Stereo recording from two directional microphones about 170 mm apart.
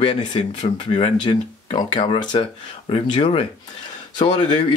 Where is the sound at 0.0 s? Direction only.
30° left (ahead or behind).